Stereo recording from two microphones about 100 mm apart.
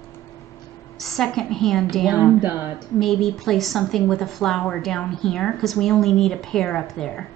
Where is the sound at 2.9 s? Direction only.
Centre (ahead or behind).